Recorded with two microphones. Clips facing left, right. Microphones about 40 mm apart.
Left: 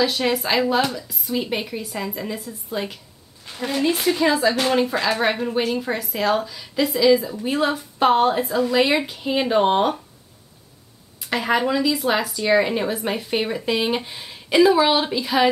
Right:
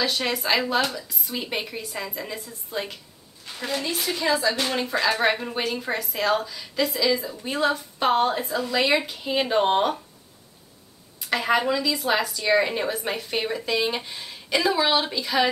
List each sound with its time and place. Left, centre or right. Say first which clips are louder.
0.0 s a woman's voice: left 4 dB; centre
4.1 s a woman's voice: left 3 dB; centre
11.1 s a woman's voice: left 1 dB; centre